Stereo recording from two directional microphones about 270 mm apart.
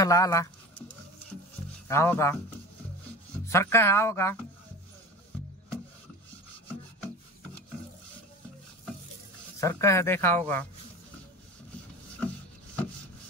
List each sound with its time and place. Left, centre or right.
0.0 s a sound: centre
1.9 s speech: centre
3.4 s speech: centre
9.6 s speech: centre